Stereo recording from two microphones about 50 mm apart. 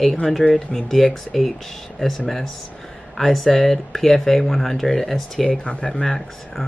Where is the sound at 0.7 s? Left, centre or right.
Centre.